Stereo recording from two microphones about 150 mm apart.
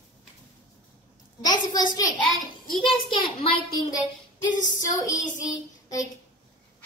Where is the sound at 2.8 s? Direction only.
35° left (ahead or behind).